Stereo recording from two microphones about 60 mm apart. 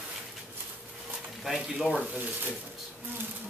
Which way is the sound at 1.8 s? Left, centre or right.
Right.